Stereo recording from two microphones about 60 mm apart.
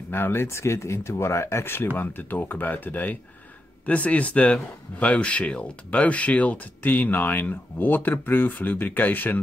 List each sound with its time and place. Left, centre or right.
0.1 s speech: left